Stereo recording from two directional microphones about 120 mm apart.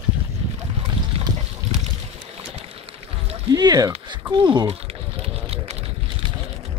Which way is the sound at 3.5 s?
30° right (ahead or behind).